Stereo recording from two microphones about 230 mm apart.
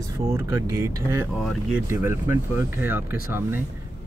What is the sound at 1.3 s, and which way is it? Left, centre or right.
Speech, centre.